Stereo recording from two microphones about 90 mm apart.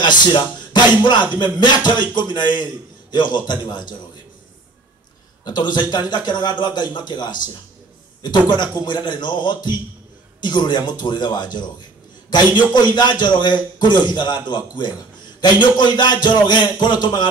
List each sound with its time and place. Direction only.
0.0 s music: 60° left (ahead or behind)
1.4 s a man's voice: 60° left (ahead or behind)
5.4 s a man's voice: 55° left (ahead or behind)